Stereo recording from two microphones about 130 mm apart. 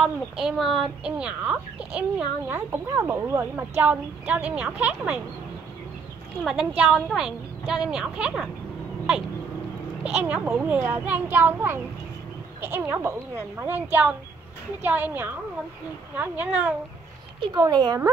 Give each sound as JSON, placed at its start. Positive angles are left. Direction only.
{"t": 0.0, "sound": "a woman's voice", "side_deg": 0}
{"t": 6.4, "sound": "a woman's voice", "side_deg": -5}
{"t": 10.2, "sound": "speech", "side_deg": -10}
{"t": 17.6, "sound": "speech", "side_deg": -30}